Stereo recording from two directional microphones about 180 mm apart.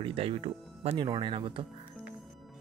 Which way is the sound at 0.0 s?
30° right (ahead or behind).